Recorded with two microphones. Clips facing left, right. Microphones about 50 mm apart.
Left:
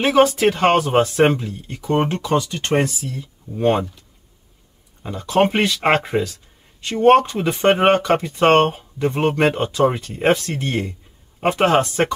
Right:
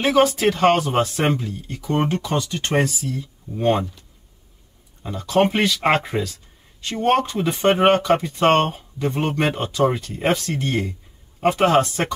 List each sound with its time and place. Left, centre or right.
0.0 s speech: left
5.0 s speech: left